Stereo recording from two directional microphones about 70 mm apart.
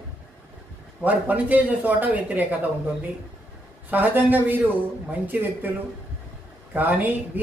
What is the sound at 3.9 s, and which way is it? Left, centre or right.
A man's voice, right.